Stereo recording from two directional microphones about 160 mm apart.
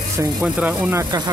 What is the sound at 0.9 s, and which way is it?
Speech, 25° right (ahead or behind).